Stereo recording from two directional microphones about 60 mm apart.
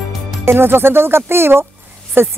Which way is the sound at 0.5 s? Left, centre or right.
Right.